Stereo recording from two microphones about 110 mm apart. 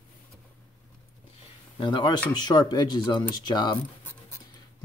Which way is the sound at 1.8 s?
45° left (ahead or behind).